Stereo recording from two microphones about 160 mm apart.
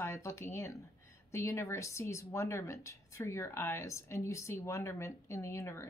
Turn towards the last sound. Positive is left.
turn(degrees=20)  # may be behind; listen again after turning